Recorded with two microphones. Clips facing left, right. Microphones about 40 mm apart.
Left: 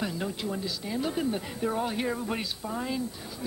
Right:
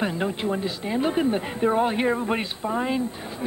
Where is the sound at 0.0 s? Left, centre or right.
Right.